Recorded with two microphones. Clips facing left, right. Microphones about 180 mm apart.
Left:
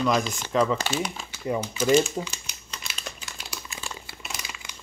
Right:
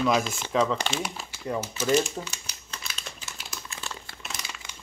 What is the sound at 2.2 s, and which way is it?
Speech, 15° left (ahead or behind).